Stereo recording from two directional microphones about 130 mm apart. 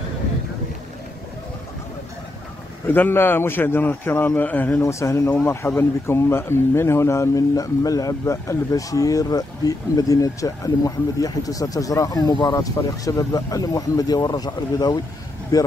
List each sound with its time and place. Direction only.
2.9 s a man's voice: 15° left (ahead or behind)